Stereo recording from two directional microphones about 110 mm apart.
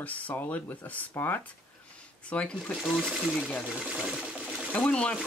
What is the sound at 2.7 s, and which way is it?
Speech, centre (ahead or behind).